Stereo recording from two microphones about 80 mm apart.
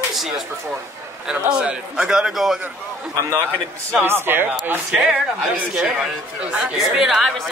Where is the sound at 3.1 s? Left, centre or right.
Right.